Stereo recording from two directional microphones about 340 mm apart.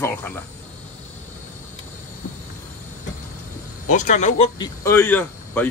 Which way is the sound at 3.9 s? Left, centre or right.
Left.